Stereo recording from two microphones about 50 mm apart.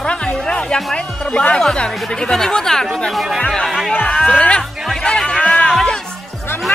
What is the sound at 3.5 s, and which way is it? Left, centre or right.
Speech, centre.